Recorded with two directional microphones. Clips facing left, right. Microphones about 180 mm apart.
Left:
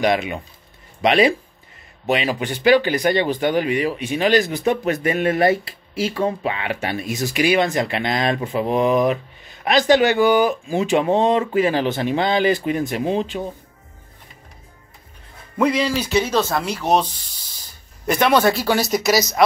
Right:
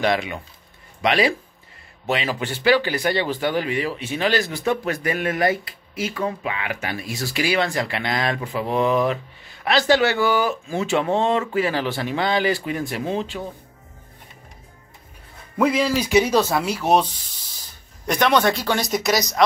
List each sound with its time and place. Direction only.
0.0 s speech: 20° left (ahead or behind)
15.5 s speech: 5° right (ahead or behind)